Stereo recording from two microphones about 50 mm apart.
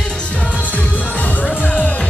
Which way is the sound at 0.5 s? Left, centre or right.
Left.